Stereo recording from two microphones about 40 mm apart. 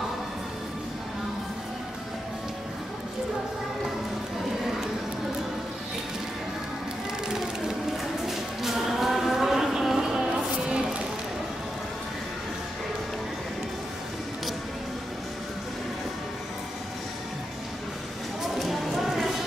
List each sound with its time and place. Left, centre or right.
7.2 s a sound: centre
8.3 s music: centre
18.6 s clip-clop: centre